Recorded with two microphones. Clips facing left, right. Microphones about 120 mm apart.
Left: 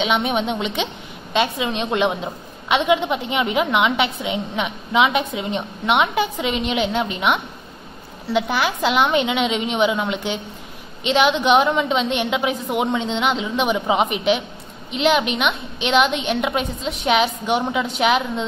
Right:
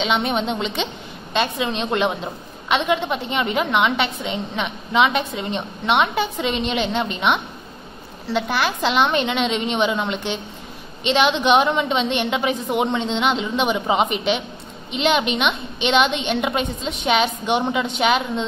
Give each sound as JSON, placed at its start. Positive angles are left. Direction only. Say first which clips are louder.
{"t": 0.0, "sound": "a woman's voice", "louder": "left 1 dB", "side_deg": 10}